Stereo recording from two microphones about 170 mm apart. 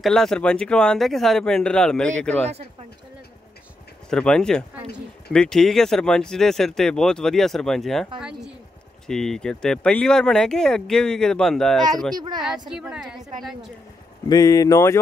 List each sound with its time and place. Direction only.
0.0 s speech: 5° left (ahead or behind)
4.1 s speech: 5° left (ahead or behind)
12.2 s a woman's voice: 25° right (ahead or behind)
12.4 s speech: 5° right (ahead or behind)
14.3 s speech: 20° left (ahead or behind)